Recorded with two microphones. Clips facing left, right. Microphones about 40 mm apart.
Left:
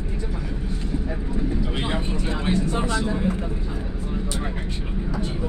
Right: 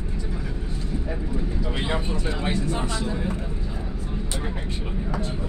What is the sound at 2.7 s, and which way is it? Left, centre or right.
Speech, centre.